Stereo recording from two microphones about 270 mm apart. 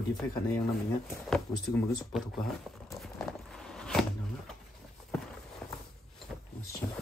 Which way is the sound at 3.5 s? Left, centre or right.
Centre.